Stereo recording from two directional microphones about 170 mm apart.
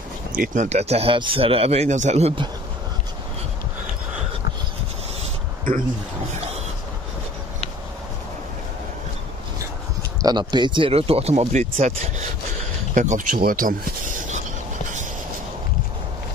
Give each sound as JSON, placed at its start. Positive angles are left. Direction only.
{"t": 0.3, "sound": "speech", "side_deg": -50}
{"t": 10.2, "sound": "speech", "side_deg": -25}